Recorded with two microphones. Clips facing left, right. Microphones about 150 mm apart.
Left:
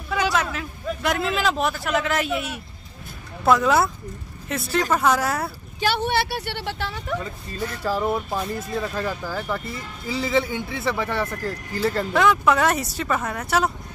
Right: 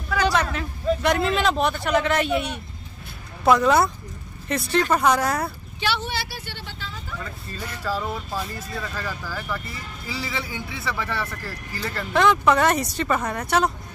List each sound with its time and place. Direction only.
0.2 s a man's voice: 5° left (ahead or behind)
5.8 s speech: 50° left (ahead or behind); by 7.2 s 70° left (ahead or behind)
7.5 s speech: 15° left (ahead or behind)
12.1 s speech: 5° left (ahead or behind)